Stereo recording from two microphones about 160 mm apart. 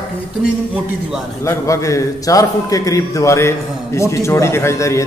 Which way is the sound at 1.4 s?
20° left (ahead or behind).